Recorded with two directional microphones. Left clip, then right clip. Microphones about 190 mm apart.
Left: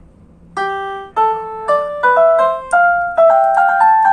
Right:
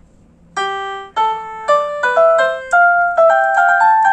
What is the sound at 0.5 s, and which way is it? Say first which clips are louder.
Music: even; 20° right (ahead or behind).